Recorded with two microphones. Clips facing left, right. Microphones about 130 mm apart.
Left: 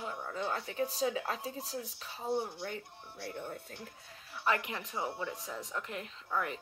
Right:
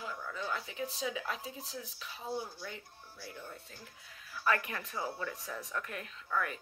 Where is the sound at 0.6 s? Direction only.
40° left (ahead or behind); by 2.7 s 25° left (ahead or behind).